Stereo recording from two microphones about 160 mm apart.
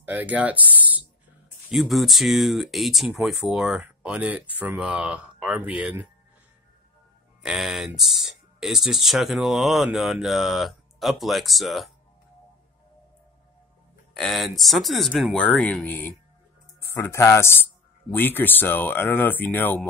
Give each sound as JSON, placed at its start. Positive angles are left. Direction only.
{"t": 0.0, "sound": "speech", "side_deg": -10}
{"t": 7.4, "sound": "speech", "side_deg": -5}
{"t": 14.1, "sound": "speech", "side_deg": 0}